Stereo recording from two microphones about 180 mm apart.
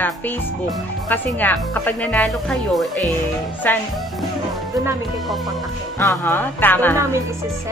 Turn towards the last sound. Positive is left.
turn(degrees=10)  # may be behind; listen again after turning